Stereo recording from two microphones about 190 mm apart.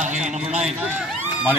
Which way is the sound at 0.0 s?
40° right (ahead or behind).